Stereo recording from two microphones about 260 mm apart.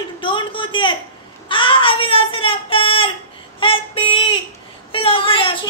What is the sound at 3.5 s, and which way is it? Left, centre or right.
Child singing, centre.